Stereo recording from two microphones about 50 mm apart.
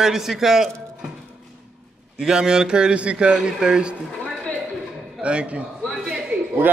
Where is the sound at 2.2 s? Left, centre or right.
Centre.